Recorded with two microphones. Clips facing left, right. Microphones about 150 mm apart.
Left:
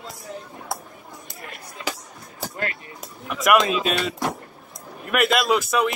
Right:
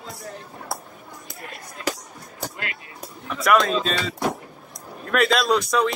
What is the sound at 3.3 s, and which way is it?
Speech, 10° left (ahead or behind).